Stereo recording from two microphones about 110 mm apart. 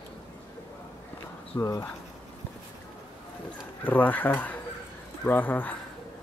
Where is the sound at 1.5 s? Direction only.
35° left (ahead or behind).